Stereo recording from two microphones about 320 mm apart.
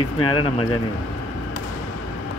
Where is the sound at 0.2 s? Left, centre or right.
Centre.